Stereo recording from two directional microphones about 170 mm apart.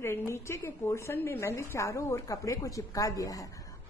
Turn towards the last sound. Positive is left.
turn(degrees=20)  # may be behind; listen again after turning